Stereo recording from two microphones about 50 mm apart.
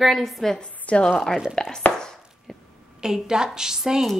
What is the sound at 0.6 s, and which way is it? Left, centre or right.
A woman's voice, left.